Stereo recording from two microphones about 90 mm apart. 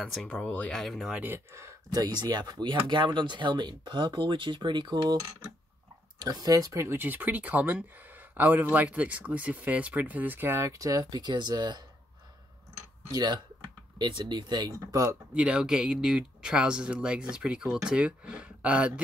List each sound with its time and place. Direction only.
0.0 s speech: 5° left (ahead or behind)
1.1 s speech: 25° right (ahead or behind)
1.9 s speech: 50° right (ahead or behind)
6.1 s speech: 45° right (ahead or behind)
13.1 s speech: 50° right (ahead or behind)
15.3 s speech: 10° right (ahead or behind)